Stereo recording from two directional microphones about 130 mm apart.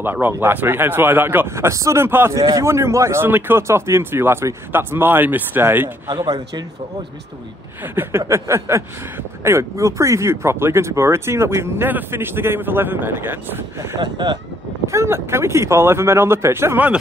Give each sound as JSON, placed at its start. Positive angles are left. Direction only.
{"t": 0.0, "sound": "speech", "side_deg": -15}
{"t": 6.2, "sound": "speech", "side_deg": -35}
{"t": 7.8, "sound": "speech", "side_deg": -15}
{"t": 13.9, "sound": "speech", "side_deg": -35}
{"t": 14.9, "sound": "speech", "side_deg": -20}